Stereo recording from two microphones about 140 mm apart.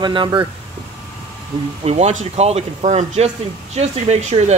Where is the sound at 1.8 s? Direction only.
50° right (ahead or behind).